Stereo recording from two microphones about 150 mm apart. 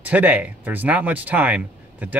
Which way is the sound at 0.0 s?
10° right (ahead or behind).